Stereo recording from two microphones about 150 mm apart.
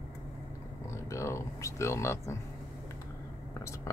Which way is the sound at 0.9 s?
20° left (ahead or behind).